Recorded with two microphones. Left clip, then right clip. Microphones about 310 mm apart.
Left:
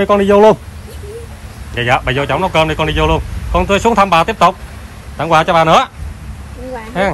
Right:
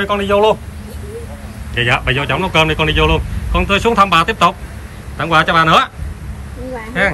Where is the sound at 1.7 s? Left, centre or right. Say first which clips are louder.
Left 1 dB; centre.